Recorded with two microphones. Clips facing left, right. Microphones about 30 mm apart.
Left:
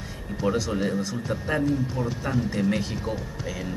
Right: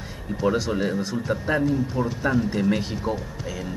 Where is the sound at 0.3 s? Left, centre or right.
Centre.